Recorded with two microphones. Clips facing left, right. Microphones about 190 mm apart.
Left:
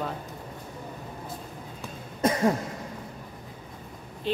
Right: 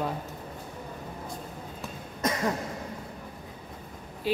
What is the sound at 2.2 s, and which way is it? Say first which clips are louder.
Cough: left 5 dB; 30° left (ahead or behind).